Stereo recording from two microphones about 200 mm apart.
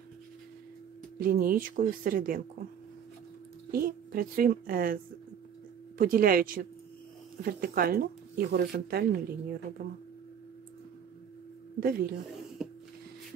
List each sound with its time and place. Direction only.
1.2 s speech: 45° right (ahead or behind)
3.7 s speech: 45° right (ahead or behind)
11.8 s speech: 45° right (ahead or behind)